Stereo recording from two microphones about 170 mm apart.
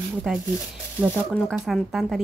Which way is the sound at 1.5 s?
Centre (ahead or behind).